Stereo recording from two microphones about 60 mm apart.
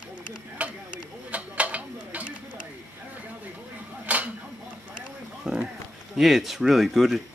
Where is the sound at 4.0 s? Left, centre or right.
Right.